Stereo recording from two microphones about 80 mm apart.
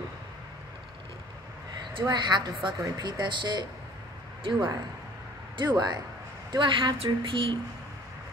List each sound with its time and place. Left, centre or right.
2.0 s a woman's voice: right
5.6 s a woman's voice: right
6.5 s a woman's voice: right